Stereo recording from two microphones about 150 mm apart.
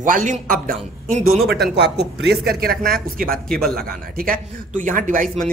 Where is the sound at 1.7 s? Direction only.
90° right.